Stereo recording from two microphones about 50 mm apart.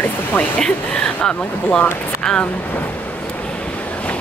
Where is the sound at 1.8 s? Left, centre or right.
Centre.